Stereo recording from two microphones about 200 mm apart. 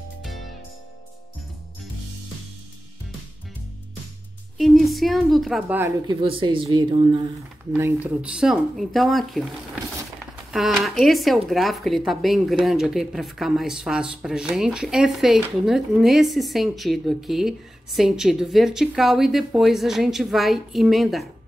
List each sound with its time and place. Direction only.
4.6 s speech: centre (ahead or behind)
5.8 s speech: 15° right (ahead or behind)
6.2 s speech: 25° right (ahead or behind)
7.7 s speech: 5° right (ahead or behind)
10.5 s speech: centre (ahead or behind)